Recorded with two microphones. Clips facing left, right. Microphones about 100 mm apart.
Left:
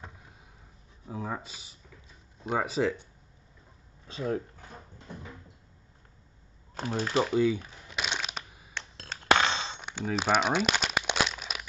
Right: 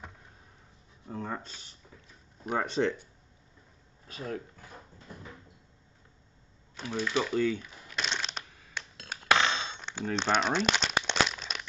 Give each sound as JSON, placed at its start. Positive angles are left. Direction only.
{"t": 1.0, "sound": "speech", "side_deg": 5}
{"t": 4.1, "sound": "dog", "side_deg": 30}
{"t": 6.7, "sound": "speech", "side_deg": 40}
{"t": 7.3, "sound": "speech", "side_deg": 10}
{"t": 7.9, "sound": "crushing", "side_deg": 10}
{"t": 9.2, "sound": "a sound", "side_deg": 30}
{"t": 10.0, "sound": "crumpling", "side_deg": 5}